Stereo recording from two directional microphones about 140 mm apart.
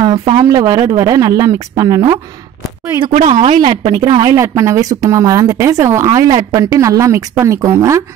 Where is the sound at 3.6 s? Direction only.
45° right (ahead or behind).